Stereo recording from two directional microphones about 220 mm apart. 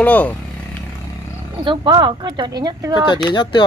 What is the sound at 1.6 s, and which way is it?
Speech, 20° right (ahead or behind).